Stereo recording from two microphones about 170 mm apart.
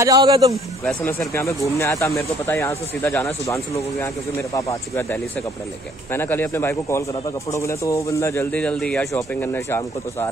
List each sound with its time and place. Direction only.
0.0 s speech: 20° right (ahead or behind)
1.0 s speech: 15° left (ahead or behind)